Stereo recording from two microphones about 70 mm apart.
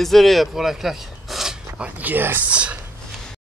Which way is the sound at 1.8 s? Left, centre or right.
Right.